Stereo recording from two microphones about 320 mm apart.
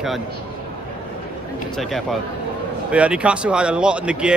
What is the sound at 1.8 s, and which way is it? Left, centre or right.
Speech, centre.